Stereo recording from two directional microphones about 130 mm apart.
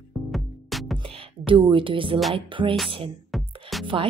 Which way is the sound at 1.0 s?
40° right (ahead or behind).